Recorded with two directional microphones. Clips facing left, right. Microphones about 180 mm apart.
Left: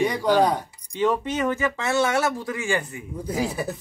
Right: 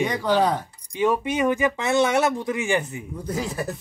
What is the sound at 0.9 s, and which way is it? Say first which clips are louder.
Speech: right 1 dB; 10° right (ahead or behind).